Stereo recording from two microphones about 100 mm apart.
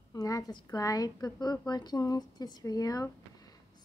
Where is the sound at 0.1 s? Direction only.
35° left (ahead or behind).